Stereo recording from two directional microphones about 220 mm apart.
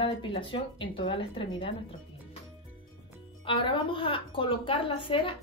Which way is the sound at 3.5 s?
25° left (ahead or behind).